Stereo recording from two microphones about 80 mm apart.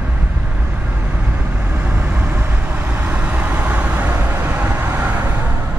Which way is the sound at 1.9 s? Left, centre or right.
Right.